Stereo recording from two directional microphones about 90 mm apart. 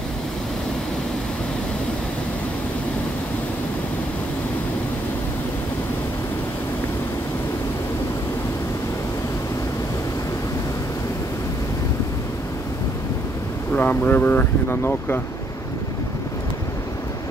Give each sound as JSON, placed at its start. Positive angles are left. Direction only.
{"t": 13.7, "sound": "speech", "side_deg": 20}